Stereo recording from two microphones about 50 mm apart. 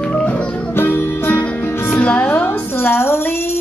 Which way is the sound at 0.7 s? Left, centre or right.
Left.